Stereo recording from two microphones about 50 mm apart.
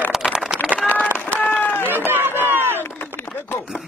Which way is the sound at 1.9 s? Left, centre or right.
Right.